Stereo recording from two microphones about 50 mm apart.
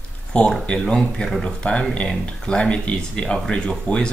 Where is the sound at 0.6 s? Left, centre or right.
Centre.